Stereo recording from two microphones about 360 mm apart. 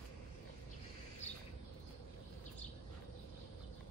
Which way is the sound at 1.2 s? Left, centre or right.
Centre.